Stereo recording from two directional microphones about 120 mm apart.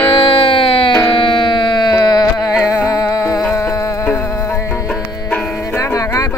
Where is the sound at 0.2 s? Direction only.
50° left (ahead or behind); by 2.2 s 35° left (ahead or behind).